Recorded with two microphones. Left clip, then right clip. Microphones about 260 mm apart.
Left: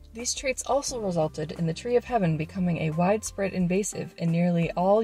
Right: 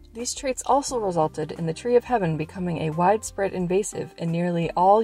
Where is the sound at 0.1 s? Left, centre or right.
Right.